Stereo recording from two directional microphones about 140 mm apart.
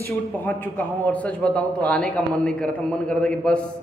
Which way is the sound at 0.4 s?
15° left (ahead or behind).